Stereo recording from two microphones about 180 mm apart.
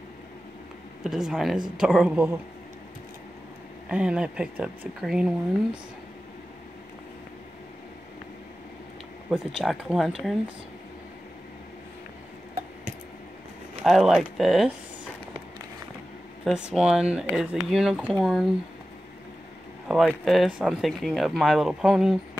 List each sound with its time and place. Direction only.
1.0 s speech: 5° right (ahead or behind)
3.9 s speech: 5° right (ahead or behind)
9.3 s speech: centre (ahead or behind)
13.8 s speech: centre (ahead or behind)
16.6 s speech: 5° right (ahead or behind)
19.9 s speech: centre (ahead or behind)